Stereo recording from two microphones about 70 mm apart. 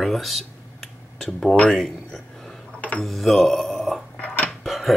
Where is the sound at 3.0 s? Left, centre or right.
Centre.